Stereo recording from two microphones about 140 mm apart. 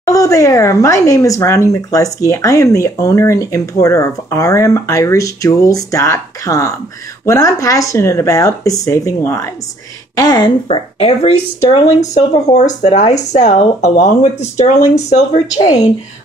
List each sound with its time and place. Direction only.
0.0 s speech: 25° left (ahead or behind)
11.0 s speech: 45° left (ahead or behind)
15.5 s speech: 25° left (ahead or behind)